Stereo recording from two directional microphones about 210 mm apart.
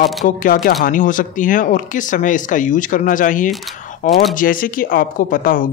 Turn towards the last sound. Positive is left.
turn(degrees=40)  # may be behind; listen again after turning